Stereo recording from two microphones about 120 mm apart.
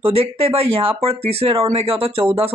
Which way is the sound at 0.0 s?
55° right (ahead or behind).